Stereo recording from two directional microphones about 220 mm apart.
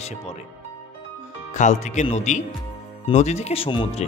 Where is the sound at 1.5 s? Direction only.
35° left (ahead or behind).